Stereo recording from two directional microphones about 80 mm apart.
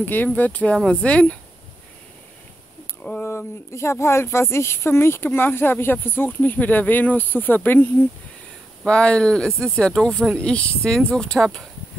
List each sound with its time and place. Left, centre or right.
0.0 s speech: left
3.2 s speech: left
8.8 s speech: centre